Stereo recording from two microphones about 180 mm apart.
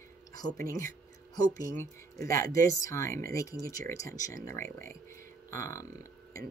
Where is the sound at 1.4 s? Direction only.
20° left (ahead or behind).